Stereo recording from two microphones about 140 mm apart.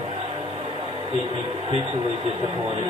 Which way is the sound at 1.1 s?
45° right (ahead or behind).